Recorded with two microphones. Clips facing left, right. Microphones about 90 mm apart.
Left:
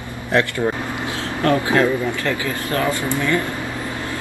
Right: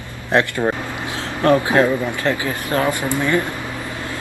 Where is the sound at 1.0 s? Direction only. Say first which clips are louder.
Right 1 dB; 20° right (ahead or behind).